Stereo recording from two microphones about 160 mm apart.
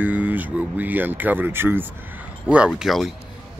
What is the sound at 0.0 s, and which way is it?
Speech, 10° right (ahead or behind).